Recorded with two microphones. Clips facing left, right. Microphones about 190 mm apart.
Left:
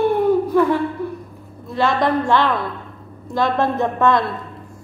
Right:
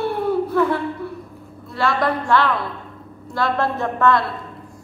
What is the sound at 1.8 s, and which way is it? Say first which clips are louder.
A woman's voice: left 3 dB; 20° left (ahead or behind).